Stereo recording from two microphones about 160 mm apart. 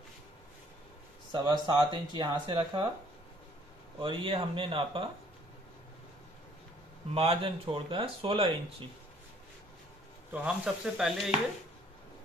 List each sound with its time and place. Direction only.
1.3 s speech: 30° right (ahead or behind)
4.0 s speech: 35° right (ahead or behind)
7.2 s speech: 35° right (ahead or behind)
10.3 s speech: 5° right (ahead or behind)